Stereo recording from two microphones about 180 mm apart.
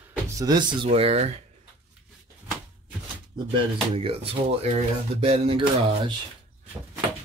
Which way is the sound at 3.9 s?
30° right (ahead or behind).